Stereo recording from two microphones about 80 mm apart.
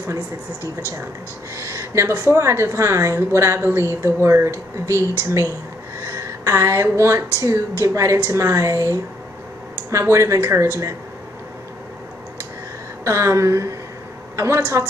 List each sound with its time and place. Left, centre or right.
1.6 s a woman's voice: right
13.0 s a woman's voice: right